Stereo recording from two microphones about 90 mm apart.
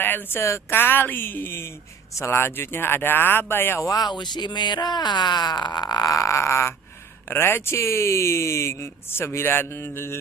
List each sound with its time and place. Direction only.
0.0 s speech: 20° left (ahead or behind)
3.9 s speech: 50° left (ahead or behind); by 10.1 s 25° left (ahead or behind)